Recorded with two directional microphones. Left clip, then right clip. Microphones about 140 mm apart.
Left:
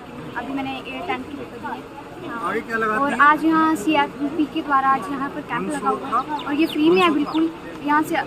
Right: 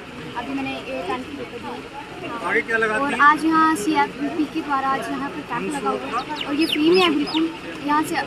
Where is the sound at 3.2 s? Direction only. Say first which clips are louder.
Right 2 dB; 35° left (ahead or behind).